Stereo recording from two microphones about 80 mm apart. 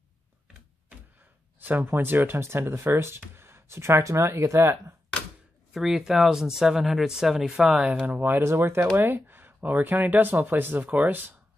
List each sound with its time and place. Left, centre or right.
1.6 s speech: right
5.7 s speech: centre
8.1 s speech: right